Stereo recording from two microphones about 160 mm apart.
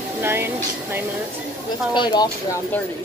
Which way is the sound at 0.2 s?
15° right (ahead or behind).